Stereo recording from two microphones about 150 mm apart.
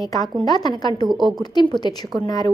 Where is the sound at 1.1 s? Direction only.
30° right (ahead or behind).